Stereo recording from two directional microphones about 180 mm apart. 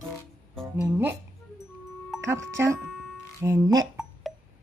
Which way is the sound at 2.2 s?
15° right (ahead or behind).